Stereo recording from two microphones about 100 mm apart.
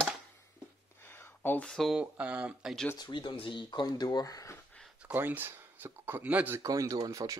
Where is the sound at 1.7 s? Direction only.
Centre (ahead or behind).